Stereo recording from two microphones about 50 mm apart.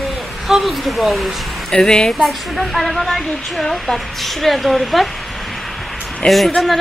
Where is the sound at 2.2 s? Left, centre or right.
Centre.